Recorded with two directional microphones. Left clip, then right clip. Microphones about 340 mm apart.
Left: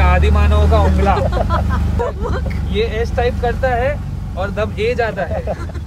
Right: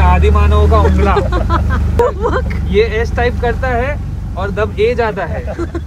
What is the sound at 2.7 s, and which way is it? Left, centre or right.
Speech, centre.